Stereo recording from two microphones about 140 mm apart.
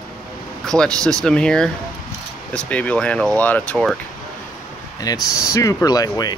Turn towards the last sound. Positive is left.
turn(degrees=25)  # may be behind; listen again after turning